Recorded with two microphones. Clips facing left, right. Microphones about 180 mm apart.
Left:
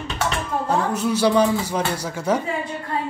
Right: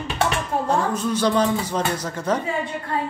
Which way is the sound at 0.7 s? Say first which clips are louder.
Left 2 dB; 10° left (ahead or behind).